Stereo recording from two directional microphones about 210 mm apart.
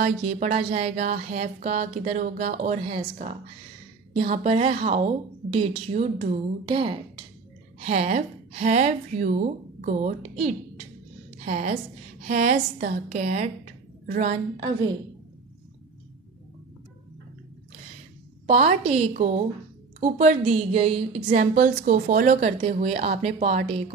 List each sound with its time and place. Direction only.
0.0 s a woman's voice: 35° right (ahead or behind)
7.8 s speech: 35° right (ahead or behind)
18.5 s a woman's voice: 30° right (ahead or behind)